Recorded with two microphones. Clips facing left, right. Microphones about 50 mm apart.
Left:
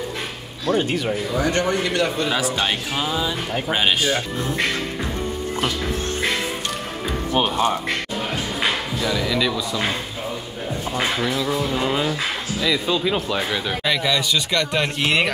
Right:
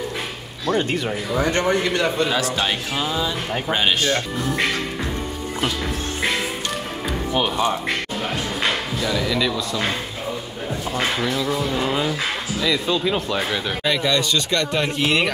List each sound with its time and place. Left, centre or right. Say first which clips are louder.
0.9 s a man's voice: even; right
2.3 s speech: even; centre
8.6 s speech: even; centre
11.0 s speech: even; centre